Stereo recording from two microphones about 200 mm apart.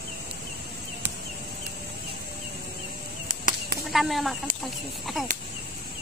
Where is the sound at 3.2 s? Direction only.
45° right (ahead or behind).